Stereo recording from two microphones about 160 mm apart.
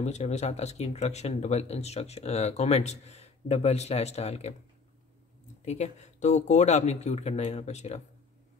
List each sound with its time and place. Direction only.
0.0 s speech: 45° left (ahead or behind)
5.7 s speech: 45° left (ahead or behind)